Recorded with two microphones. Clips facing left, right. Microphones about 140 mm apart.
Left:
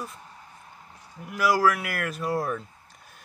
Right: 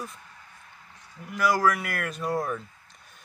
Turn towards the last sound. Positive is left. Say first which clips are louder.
# left 3 dB
turn(degrees=5)  # may be behind; listen again after turning